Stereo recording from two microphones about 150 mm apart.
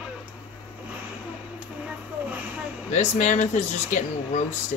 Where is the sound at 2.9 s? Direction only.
55° left (ahead or behind).